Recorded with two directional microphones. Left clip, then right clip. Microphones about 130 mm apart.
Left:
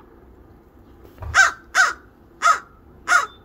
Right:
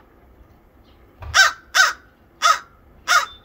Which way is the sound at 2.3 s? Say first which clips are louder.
Even; 25° right (ahead or behind).